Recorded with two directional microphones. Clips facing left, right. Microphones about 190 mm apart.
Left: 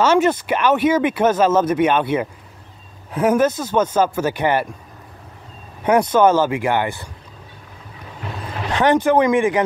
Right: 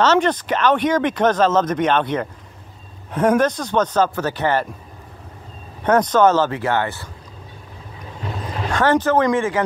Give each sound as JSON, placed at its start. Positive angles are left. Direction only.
{"t": 0.0, "sound": "speech", "side_deg": 10}
{"t": 5.9, "sound": "speech", "side_deg": 10}
{"t": 8.7, "sound": "speech", "side_deg": 15}